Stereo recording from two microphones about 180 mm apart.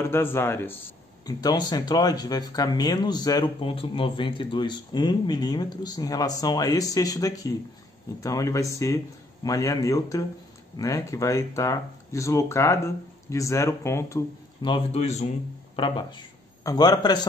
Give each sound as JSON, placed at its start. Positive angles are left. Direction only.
{"t": 0.0, "sound": "speech", "side_deg": 10}